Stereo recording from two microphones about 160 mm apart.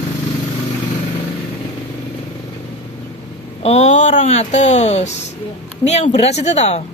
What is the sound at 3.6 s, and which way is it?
Speech, 45° left (ahead or behind).